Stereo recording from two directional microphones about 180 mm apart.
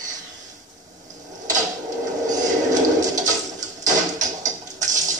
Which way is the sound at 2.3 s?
20° right (ahead or behind).